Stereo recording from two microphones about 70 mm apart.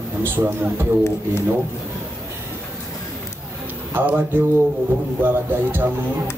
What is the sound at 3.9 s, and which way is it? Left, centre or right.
Speech, right.